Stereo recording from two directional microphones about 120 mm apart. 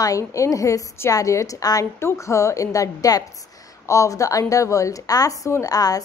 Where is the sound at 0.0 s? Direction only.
25° left (ahead or behind).